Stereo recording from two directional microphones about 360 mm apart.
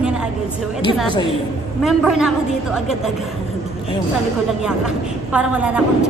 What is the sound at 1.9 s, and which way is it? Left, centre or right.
Speech, centre.